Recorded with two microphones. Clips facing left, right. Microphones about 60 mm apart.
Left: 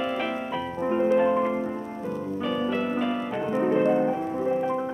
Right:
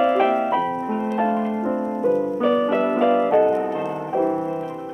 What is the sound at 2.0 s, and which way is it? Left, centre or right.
Music, right.